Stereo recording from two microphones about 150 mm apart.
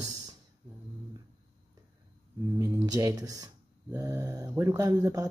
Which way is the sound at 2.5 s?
25° right (ahead or behind).